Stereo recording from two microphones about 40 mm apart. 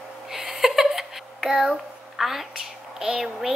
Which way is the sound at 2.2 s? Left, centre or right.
Centre.